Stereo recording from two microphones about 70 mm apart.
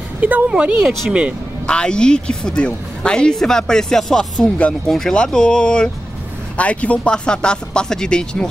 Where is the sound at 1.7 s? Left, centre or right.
Centre.